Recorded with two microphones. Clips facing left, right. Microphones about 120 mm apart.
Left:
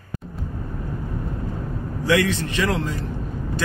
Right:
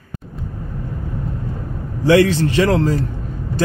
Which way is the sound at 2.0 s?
30° right (ahead or behind).